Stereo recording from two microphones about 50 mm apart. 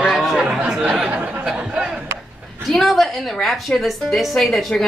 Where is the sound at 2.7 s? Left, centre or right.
Centre.